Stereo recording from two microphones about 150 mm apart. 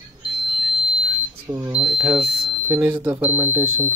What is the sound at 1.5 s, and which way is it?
Speech, 25° right (ahead or behind).